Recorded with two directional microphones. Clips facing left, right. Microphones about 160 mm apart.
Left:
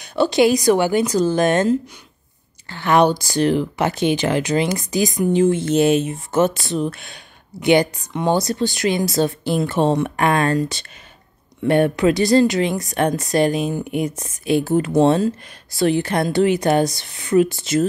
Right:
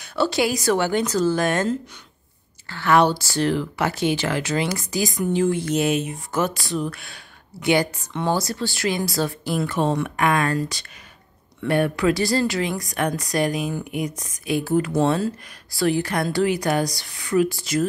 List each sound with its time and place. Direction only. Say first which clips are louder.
0.0 s speech: left 6 dB; 20° left (ahead or behind)